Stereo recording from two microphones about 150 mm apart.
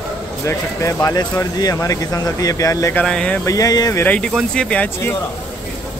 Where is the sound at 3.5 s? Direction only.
25° left (ahead or behind).